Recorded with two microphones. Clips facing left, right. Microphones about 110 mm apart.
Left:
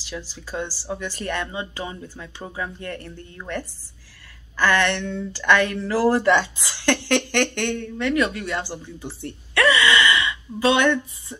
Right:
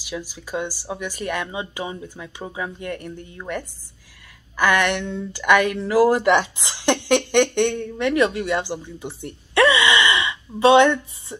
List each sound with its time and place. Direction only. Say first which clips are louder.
0.0 s speech: right 3 dB; 10° right (ahead or behind)